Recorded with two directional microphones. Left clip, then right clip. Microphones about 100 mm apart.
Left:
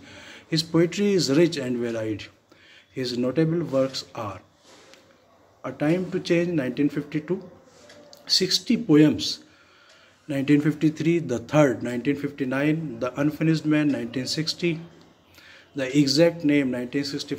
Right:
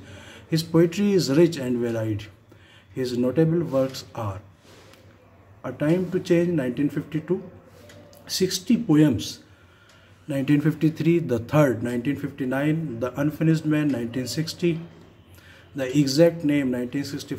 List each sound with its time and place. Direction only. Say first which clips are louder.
0.0 s a man's voice: left 1 dB; 35° right (ahead or behind)
3.9 s speech: left 1 dB; 40° right (ahead or behind)
5.6 s speech: right 1 dB; 35° right (ahead or behind)